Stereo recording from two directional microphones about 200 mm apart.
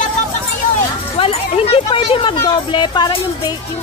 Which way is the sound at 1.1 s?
30° left (ahead or behind).